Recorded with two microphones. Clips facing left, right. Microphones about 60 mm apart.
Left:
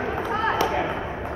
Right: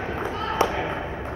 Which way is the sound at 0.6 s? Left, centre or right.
Right.